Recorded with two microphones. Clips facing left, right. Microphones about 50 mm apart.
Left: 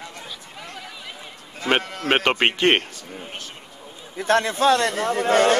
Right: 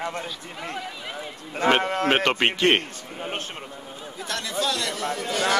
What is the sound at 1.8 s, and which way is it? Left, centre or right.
Speech, right.